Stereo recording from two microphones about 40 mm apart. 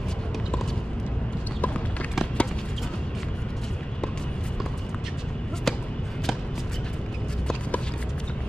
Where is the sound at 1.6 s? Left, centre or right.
Left.